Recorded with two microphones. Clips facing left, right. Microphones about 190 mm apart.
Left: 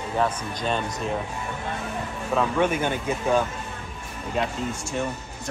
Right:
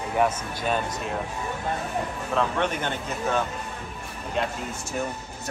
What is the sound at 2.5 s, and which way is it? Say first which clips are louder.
Speech: left 4 dB; 10° left (ahead or behind).